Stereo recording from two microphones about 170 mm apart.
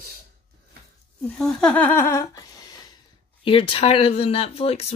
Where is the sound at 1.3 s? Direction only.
5° left (ahead or behind); by 2.8 s 20° left (ahead or behind).